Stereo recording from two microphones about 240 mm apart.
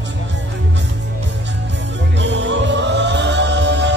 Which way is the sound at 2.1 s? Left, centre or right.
Right.